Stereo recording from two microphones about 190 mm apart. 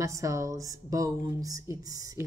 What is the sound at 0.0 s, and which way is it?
Speech, 15° right (ahead or behind).